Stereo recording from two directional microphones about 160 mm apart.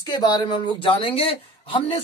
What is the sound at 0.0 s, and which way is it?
Speech, 25° left (ahead or behind).